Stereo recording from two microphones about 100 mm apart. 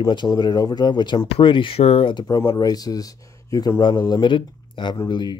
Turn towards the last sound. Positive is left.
turn(degrees=45)  # may be behind; listen again after turning